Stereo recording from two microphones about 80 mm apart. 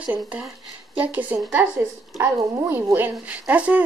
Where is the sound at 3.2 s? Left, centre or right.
Centre.